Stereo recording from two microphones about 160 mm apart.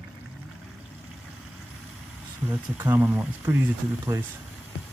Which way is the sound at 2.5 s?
10° right (ahead or behind).